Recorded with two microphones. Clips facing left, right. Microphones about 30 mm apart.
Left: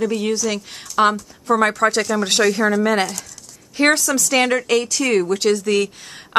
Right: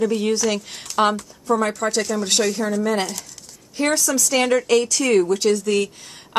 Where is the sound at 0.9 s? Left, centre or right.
Right.